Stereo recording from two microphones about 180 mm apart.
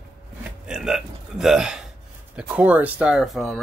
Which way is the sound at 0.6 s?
5° right (ahead or behind).